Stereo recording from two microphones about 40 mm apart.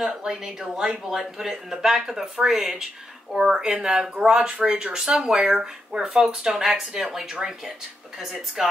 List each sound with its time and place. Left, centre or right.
0.0 s speech: centre